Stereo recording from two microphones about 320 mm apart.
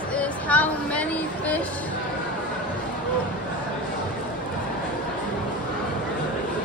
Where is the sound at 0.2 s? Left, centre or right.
Centre.